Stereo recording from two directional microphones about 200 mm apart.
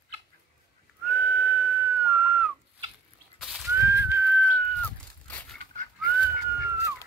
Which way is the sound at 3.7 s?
15° right (ahead or behind).